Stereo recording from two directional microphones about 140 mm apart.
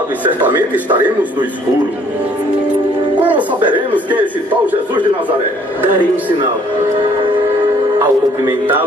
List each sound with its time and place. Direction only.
3.3 s a man's voice: 10° right (ahead or behind)
8.0 s a man's voice: 15° right (ahead or behind)